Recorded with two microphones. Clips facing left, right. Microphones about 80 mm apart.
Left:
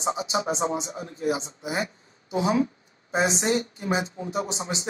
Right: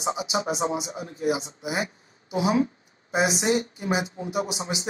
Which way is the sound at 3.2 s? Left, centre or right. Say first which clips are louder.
Right 1 dB; left.